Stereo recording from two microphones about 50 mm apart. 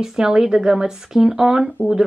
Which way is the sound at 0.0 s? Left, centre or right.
Centre.